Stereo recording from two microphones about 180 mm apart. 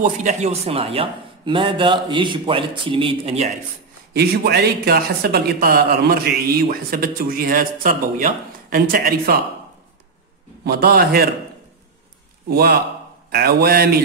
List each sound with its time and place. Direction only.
0.0 s speech: 40° right (ahead or behind)
4.1 s speech: 60° right (ahead or behind)
10.6 s speech: 60° right (ahead or behind)
12.4 s speech: 60° right (ahead or behind)